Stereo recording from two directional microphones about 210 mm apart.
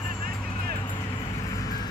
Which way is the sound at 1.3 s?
15° left (ahead or behind).